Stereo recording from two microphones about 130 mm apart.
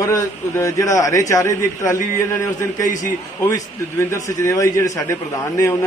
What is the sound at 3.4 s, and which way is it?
A man's voice, 25° left (ahead or behind).